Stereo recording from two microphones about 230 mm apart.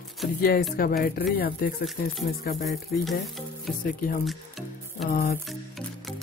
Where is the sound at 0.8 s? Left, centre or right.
Left.